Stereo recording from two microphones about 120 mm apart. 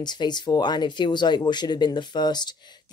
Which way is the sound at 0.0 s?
35° left (ahead or behind).